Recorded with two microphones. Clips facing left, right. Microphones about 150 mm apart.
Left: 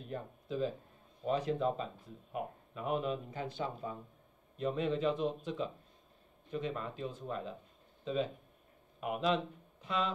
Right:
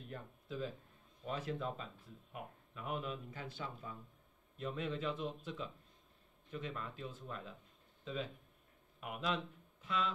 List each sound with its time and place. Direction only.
0.0 s speech: 25° left (ahead or behind)